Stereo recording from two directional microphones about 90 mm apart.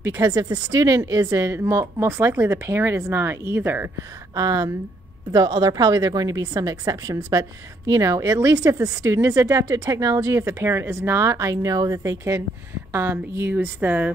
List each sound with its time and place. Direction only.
0.0 s a woman's voice: 40° right (ahead or behind)
4.4 s a woman's voice: 40° right (ahead or behind); by 14.1 s 20° right (ahead or behind)